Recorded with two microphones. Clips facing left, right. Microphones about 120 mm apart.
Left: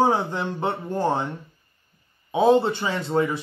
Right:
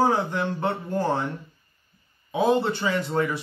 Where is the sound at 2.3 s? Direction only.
25° left (ahead or behind).